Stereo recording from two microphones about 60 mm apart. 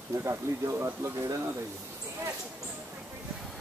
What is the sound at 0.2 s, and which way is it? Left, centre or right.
Speech, right.